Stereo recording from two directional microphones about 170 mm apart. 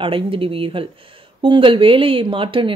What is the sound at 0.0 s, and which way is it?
Speech, 30° right (ahead or behind).